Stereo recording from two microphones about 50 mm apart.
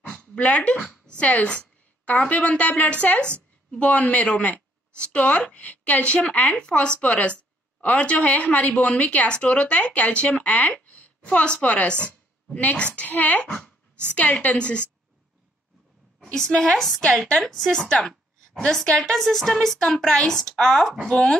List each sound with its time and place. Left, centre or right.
0.1 s a sound: left
1.0 s a woman's voice: left
4.2 s a sound: left
5.0 s a woman's voice: left
10.2 s a woman's voice: centre
10.5 s a sound: left
11.6 s a woman's voice: left
13.0 s a child's voice: left
16.3 s a woman's voice: centre